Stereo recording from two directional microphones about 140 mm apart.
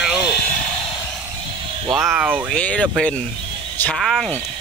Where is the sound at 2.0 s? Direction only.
10° right (ahead or behind).